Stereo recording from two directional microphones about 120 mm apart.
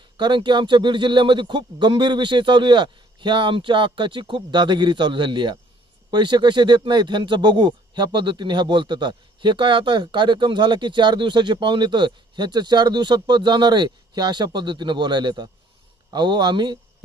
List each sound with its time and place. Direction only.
0.2 s speech: 40° right (ahead or behind)